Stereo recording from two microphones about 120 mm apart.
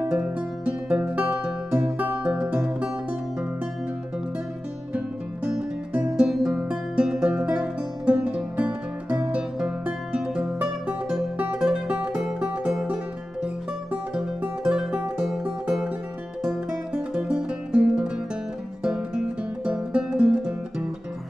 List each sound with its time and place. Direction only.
0.0 s music: 10° right (ahead or behind)
4.9 s music: 5° right (ahead or behind)